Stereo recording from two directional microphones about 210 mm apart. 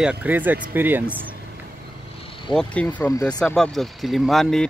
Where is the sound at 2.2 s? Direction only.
25° left (ahead or behind).